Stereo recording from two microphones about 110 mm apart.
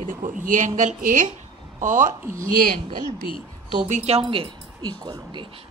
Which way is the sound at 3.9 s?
75° right (ahead or behind).